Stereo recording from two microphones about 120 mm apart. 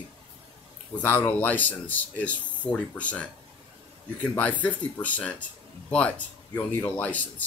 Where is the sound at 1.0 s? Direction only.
15° left (ahead or behind).